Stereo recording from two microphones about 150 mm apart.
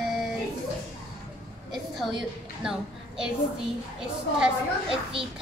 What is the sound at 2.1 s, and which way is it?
A child's voice, 5° right (ahead or behind).